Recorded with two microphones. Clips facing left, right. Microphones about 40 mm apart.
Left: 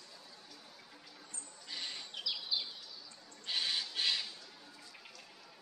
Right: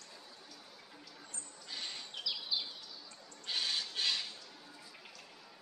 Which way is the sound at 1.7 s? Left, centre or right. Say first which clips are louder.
Even; centre.